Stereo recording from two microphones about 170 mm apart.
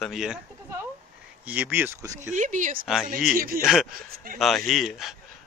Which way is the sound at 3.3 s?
55° right (ahead or behind).